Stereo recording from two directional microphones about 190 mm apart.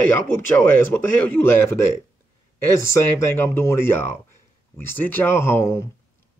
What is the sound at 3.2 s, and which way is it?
Speech, 15° left (ahead or behind).